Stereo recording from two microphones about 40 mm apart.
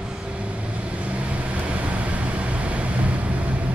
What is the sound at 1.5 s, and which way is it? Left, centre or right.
Vehicle, right.